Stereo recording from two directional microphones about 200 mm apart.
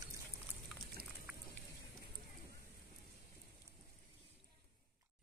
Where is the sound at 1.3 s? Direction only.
5° right (ahead or behind).